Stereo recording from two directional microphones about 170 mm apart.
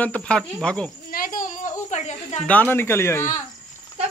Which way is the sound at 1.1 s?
55° left (ahead or behind).